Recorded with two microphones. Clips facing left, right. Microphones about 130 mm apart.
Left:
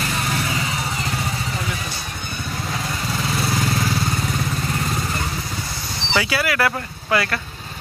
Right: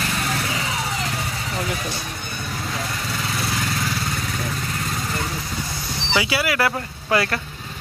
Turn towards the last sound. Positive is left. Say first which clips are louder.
# even
turn(degrees=-30)  # may be behind; listen again after turning